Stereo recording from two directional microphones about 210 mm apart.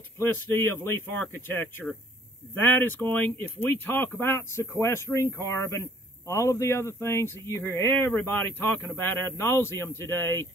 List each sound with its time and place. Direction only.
0.2 s speech: 10° left (ahead or behind)